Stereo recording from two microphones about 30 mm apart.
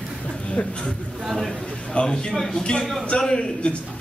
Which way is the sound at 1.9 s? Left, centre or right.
Left.